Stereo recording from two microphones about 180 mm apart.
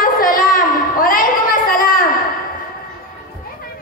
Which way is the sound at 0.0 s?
50° left (ahead or behind).